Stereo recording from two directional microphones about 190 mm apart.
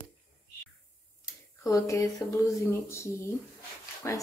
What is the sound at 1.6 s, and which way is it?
Speech, 15° left (ahead or behind).